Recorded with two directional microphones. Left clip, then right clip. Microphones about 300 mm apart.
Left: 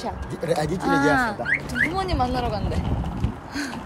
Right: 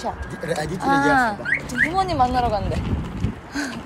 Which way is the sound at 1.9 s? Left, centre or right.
Centre.